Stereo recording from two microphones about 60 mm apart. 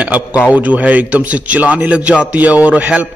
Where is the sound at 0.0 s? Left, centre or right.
Right.